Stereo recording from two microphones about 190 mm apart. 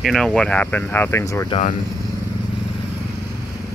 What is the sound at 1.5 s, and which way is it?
Speech, 40° left (ahead or behind).